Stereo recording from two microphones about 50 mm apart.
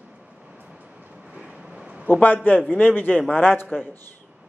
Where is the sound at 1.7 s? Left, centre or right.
Right.